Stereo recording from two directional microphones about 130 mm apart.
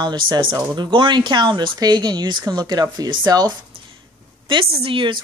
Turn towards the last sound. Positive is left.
turn(degrees=-40)  # may be behind; listen again after turning